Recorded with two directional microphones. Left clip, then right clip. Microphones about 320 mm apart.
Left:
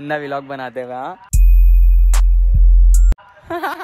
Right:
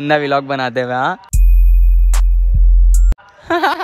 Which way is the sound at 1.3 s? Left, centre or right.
Centre.